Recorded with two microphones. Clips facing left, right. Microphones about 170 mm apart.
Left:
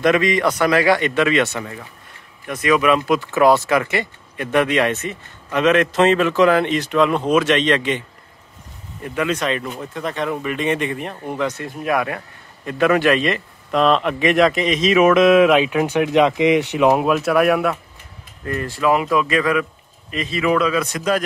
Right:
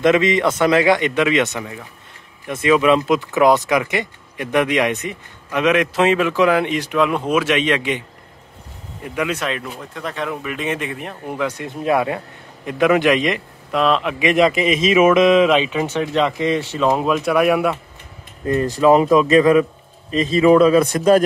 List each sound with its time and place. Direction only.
0.0 s a man's voice: 25° right (ahead or behind)
2.4 s a man's voice: 25° right (ahead or behind)
9.0 s speech: 10° right (ahead or behind)
11.6 s a man's voice: 25° right (ahead or behind)
13.7 s speech: centre (ahead or behind)
18.4 s speech: 25° right (ahead or behind)
18.7 s a man's voice: 35° right (ahead or behind)